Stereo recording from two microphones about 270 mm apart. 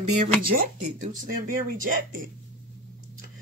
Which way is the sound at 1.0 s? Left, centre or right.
Right.